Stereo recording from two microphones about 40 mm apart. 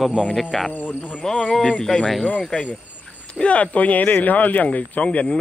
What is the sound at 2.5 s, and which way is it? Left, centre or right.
Speech, left.